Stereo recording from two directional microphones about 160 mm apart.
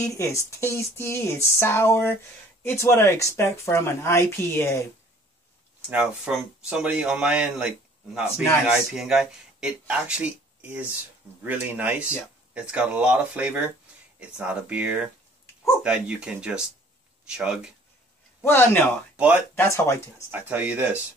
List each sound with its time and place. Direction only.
0.0 s speech: 20° left (ahead or behind)
5.9 s speech: 10° right (ahead or behind)
18.4 s speech: 15° left (ahead or behind)
19.1 s speech: 5° right (ahead or behind)
19.5 s speech: 15° left (ahead or behind)
20.2 s speech: 10° right (ahead or behind)